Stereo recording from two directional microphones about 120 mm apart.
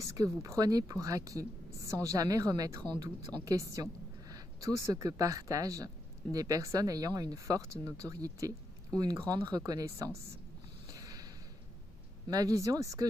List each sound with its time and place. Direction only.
0.0 s a woman's voice: 25° right (ahead or behind)
10.9 s a sound: 30° right (ahead or behind)
12.3 s speech: 30° right (ahead or behind)